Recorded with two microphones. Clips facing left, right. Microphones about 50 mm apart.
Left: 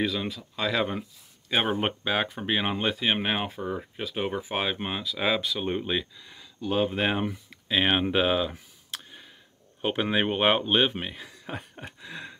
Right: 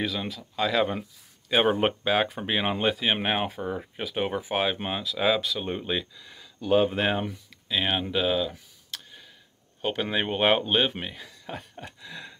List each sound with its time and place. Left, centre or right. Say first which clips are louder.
0.0 s speech: left 2 dB; centre
7.2 s a sound: left 3 dB; left
9.8 s speech: left 2 dB; centre